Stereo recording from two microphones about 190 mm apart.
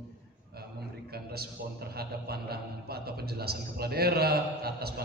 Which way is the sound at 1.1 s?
55° right (ahead or behind).